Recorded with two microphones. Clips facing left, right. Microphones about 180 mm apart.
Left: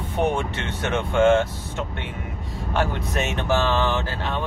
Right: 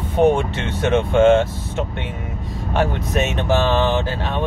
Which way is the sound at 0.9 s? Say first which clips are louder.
Right 4 dB; 25° right (ahead or behind).